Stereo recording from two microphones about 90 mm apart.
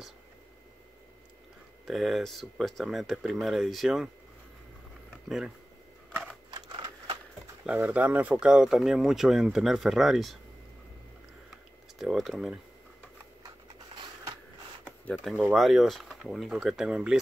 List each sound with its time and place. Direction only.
1.9 s speech: centre (ahead or behind)
6.5 s computer keyboard: 55° right (ahead or behind)
7.6 s speech: 15° right (ahead or behind)
11.5 s a sound: 5° right (ahead or behind)
14.9 s speech: 15° left (ahead or behind)
15.5 s speech: centre (ahead or behind)